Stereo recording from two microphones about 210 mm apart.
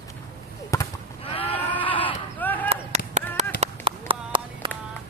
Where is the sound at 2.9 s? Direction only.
30° right (ahead or behind).